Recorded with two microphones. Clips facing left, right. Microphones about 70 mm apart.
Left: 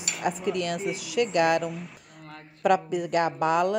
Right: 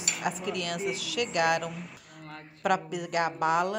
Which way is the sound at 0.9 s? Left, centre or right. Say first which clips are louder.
Left 5 dB; left.